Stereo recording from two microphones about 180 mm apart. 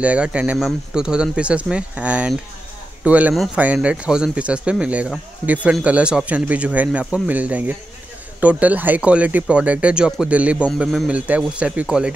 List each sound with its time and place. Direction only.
0.0 s speech: 5° right (ahead or behind)